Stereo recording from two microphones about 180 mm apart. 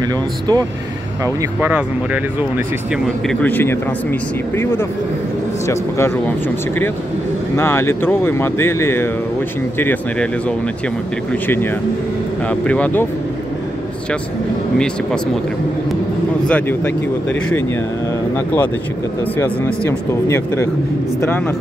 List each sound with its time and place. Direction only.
0.0 s speech: 20° right (ahead or behind)
1.2 s speech: 10° right (ahead or behind)
3.3 s speech: 10° left (ahead or behind)
11.4 s speech: 10° left (ahead or behind)
16.4 s speech: 10° left (ahead or behind)
20.2 s speech: 15° left (ahead or behind)